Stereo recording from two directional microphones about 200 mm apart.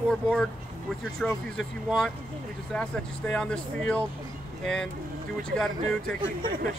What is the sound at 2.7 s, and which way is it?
Speech, 5° left (ahead or behind).